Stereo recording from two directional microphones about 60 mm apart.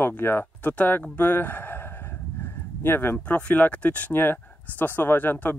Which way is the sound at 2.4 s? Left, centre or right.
Left.